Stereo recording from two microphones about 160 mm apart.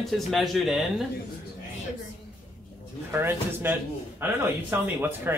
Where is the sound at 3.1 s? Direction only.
15° right (ahead or behind).